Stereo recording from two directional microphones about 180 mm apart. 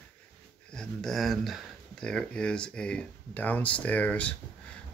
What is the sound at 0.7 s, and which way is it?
Speech, 5° left (ahead or behind).